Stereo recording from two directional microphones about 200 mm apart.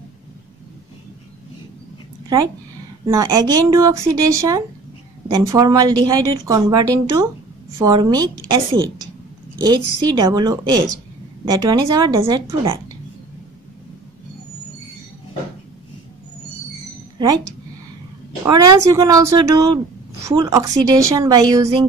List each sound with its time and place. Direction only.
3.1 s a woman's voice: 20° right (ahead or behind)
18.4 s a woman's voice: 15° right (ahead or behind)